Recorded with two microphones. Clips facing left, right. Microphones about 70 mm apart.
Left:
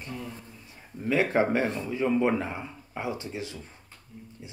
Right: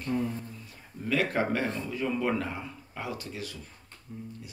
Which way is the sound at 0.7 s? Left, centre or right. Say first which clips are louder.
Left 3 dB; left.